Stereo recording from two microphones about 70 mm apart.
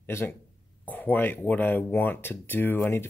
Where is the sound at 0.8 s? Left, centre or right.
Left.